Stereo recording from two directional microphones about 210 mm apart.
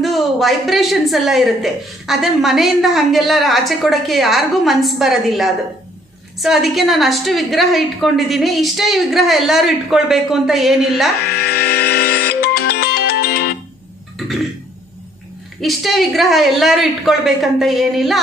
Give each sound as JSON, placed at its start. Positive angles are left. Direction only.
{"t": 0.0, "sound": "a woman's voice", "side_deg": 0}
{"t": 11.2, "sound": "music", "side_deg": 50}
{"t": 14.1, "sound": "burping", "side_deg": 0}
{"t": 15.6, "sound": "a woman's voice", "side_deg": 0}